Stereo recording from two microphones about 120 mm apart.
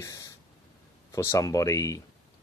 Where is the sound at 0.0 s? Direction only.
25° left (ahead or behind).